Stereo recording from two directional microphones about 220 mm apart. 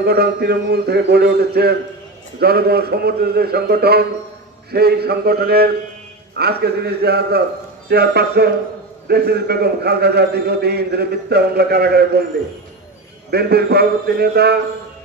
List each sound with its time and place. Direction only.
0.0 s a man's voice: 45° right (ahead or behind)
13.3 s a man's voice: 45° right (ahead or behind)